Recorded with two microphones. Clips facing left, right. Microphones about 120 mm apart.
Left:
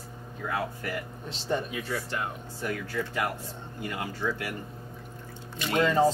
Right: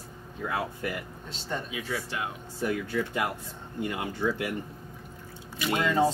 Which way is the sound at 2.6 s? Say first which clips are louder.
Right 3 dB; 20° right (ahead or behind).